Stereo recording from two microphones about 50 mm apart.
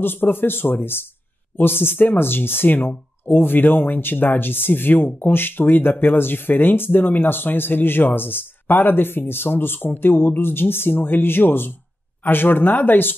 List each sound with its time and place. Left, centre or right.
0.0 s speech: left